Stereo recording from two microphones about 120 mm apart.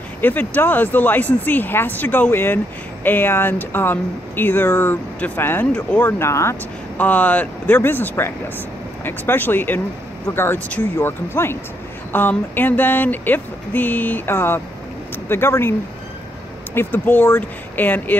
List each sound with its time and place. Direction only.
0.2 s speech: 15° left (ahead or behind)
16.7 s speech: 15° left (ahead or behind)